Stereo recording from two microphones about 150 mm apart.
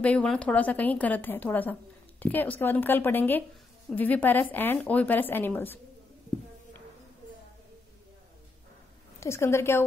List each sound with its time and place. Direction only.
0.0 s a woman's voice: 5° left (ahead or behind)
9.2 s a woman's voice: 20° left (ahead or behind)